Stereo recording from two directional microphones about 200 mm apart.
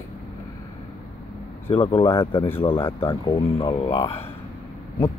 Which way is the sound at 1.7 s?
25° left (ahead or behind).